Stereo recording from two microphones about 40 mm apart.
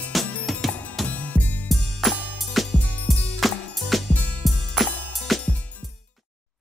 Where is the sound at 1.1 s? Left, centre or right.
Left.